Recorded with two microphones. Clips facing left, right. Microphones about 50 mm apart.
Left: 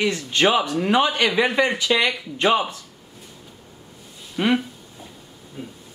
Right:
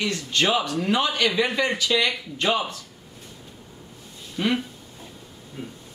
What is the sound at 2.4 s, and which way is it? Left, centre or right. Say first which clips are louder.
Speech: left 4 dB; centre.